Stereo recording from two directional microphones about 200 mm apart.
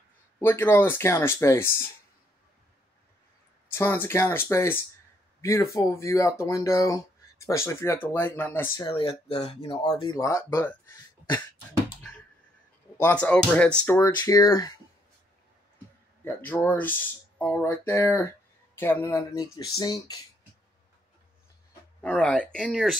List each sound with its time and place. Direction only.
0.4 s speech: 10° left (ahead or behind)
3.7 s speech: 10° left (ahead or behind)
8.8 s speech: 25° left (ahead or behind)
12.9 s speech: 10° left (ahead or behind)
16.3 s speech: 10° left (ahead or behind)
22.0 s speech: 5° left (ahead or behind)